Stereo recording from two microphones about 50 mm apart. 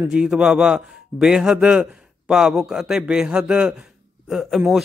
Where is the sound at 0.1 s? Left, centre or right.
Centre.